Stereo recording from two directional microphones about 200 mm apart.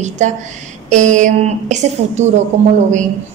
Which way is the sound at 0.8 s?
40° right (ahead or behind).